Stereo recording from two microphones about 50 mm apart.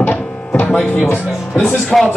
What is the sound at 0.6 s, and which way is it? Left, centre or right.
Speech, left.